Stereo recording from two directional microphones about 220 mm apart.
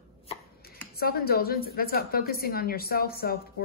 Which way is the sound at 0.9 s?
45° left (ahead or behind).